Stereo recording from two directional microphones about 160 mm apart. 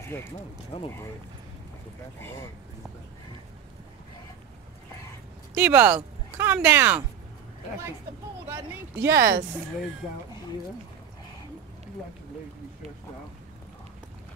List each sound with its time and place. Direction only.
0.1 s speech: 10° left (ahead or behind)
0.7 s speech: 35° left (ahead or behind)
5.5 s speech: 10° right (ahead or behind)
9.0 s speech: 75° right (ahead or behind)